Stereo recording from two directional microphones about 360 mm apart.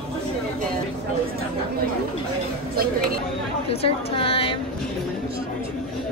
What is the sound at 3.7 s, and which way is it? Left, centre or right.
Speech, centre.